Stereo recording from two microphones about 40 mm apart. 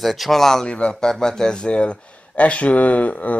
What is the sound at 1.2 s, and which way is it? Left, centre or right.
Speech, centre.